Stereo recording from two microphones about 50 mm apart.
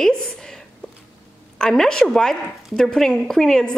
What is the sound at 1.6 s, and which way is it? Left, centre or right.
A woman's voice, centre.